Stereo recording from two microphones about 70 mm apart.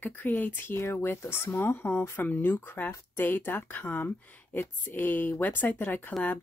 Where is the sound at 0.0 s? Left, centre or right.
Left.